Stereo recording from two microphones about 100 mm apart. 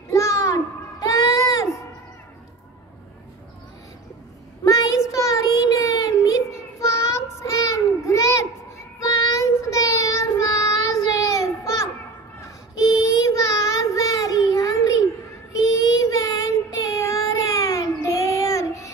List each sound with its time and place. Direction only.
0.1 s child singing: 30° left (ahead or behind)
4.6 s child singing: 35° left (ahead or behind)
12.9 s child singing: 30° left (ahead or behind)
14.5 s a sound: 35° left (ahead or behind)
15.6 s child singing: 35° left (ahead or behind)